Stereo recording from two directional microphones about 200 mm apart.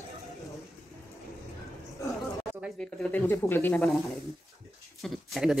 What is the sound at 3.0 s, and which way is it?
Speech, 10° left (ahead or behind).